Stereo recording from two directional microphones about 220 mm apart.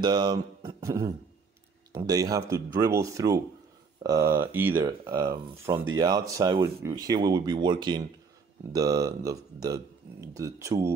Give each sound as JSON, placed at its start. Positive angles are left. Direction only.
{"t": 0.0, "sound": "speech", "side_deg": -20}